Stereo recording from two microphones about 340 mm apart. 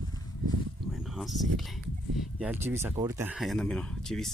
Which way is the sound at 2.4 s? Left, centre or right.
Centre.